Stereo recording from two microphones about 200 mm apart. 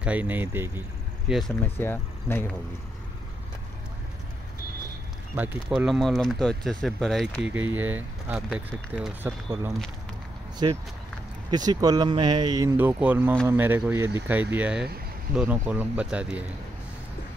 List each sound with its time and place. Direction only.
0.0 s speech: 5° right (ahead or behind)
1.8 s speech: 10° left (ahead or behind)
5.3 s speech: 10° right (ahead or behind)
10.6 s speech: 25° right (ahead or behind); by 16.4 s 5° right (ahead or behind)